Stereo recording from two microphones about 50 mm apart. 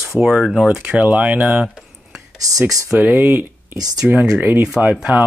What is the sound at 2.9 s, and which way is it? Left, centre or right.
Speech, right.